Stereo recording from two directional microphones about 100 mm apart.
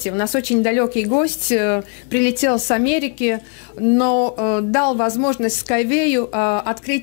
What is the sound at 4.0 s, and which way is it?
Speech, 15° left (ahead or behind).